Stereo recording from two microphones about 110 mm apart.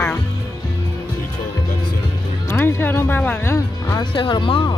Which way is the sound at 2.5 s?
20° left (ahead or behind).